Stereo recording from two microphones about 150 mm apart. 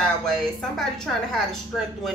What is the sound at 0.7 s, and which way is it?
Speech, 5° left (ahead or behind).